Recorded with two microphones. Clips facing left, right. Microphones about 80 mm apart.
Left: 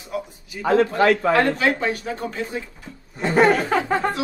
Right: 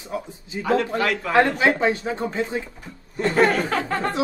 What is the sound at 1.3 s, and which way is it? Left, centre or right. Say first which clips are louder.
A man's voice: right 1 dB; right.